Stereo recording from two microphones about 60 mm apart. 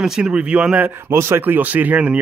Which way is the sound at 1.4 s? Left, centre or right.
Right.